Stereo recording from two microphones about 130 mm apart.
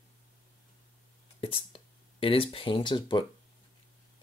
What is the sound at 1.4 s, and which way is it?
Speech, 45° left (ahead or behind).